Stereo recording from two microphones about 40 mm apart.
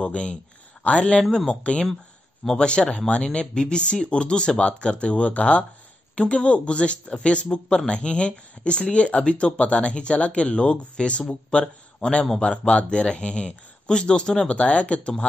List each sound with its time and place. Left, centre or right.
0.0 s speech: left
14.5 s speech: left